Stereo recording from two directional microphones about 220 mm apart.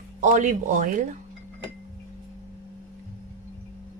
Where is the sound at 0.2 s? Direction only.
35° right (ahead or behind).